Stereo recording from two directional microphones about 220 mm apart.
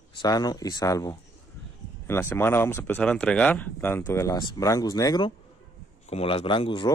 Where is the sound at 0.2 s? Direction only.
20° left (ahead or behind).